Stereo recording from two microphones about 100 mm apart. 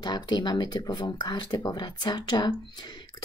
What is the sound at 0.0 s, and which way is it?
Speech, 45° left (ahead or behind).